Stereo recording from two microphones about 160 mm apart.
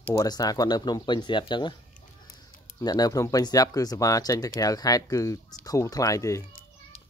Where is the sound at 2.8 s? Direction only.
25° left (ahead or behind).